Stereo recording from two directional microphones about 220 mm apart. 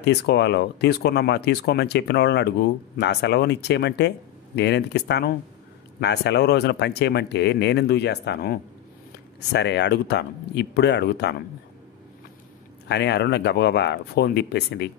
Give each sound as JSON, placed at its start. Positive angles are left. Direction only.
{"t": 0.0, "sound": "speech", "side_deg": 50}
{"t": 12.8, "sound": "speech", "side_deg": 50}